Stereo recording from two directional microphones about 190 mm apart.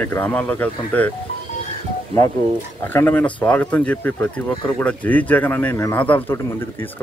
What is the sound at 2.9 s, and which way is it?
A man's voice, 10° left (ahead or behind).